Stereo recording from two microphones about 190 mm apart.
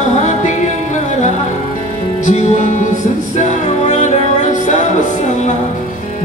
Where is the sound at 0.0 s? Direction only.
40° left (ahead or behind).